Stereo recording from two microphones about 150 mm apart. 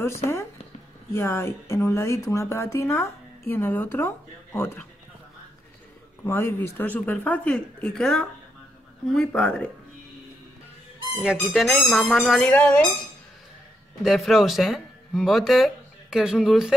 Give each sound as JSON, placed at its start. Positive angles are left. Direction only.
{"t": 0.0, "sound": "speech", "side_deg": 20}
{"t": 6.2, "sound": "speech", "side_deg": 15}
{"t": 11.3, "sound": "speech", "side_deg": 0}
{"t": 14.0, "sound": "speech", "side_deg": 0}